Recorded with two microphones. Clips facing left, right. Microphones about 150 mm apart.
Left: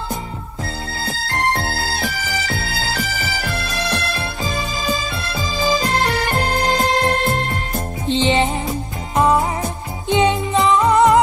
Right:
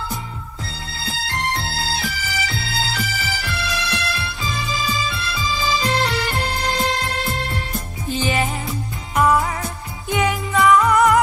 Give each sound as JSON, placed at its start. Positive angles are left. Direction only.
{"t": 0.9, "sound": "music", "side_deg": 45}
{"t": 8.1, "sound": "music", "side_deg": 25}